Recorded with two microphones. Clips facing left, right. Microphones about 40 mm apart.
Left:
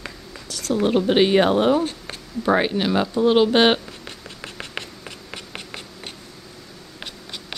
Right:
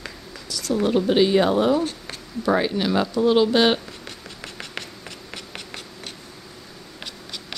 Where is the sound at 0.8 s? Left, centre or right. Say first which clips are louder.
Left 1 dB; left.